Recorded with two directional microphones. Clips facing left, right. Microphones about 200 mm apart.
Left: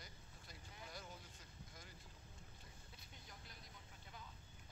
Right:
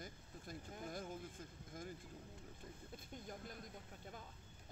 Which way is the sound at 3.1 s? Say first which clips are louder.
Right 12 dB; 50° right (ahead or behind).